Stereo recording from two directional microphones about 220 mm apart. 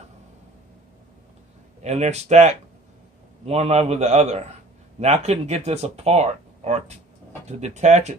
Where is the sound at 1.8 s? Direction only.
30° right (ahead or behind).